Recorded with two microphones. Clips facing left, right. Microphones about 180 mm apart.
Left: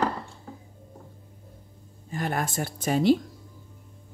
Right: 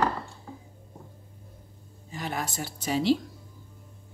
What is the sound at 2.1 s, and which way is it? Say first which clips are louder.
Speech: left 4 dB; 50° left (ahead or behind).